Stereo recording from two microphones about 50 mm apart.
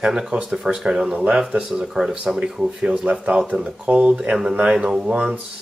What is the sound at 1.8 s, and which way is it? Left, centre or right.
Speech, centre.